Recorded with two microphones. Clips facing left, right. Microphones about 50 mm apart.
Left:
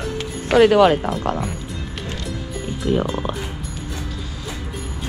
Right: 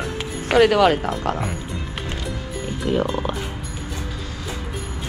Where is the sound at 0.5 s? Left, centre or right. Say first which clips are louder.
Left 2 dB; right.